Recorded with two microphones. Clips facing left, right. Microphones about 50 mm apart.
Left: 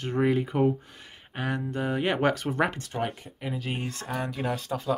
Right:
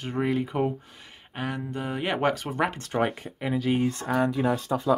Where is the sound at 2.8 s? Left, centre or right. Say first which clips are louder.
Right 5 dB; right.